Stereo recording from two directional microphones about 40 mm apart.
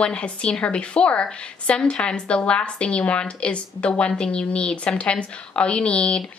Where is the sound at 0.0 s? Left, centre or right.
Left.